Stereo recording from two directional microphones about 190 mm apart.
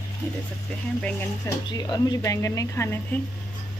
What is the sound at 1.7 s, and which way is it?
A man's voice, 20° left (ahead or behind).